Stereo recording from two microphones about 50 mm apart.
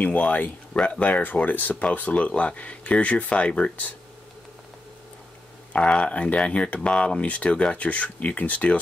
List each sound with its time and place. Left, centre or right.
0.0 s speech: left
5.7 s speech: left